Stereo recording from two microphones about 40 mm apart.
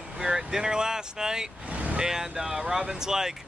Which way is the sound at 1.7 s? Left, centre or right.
Right.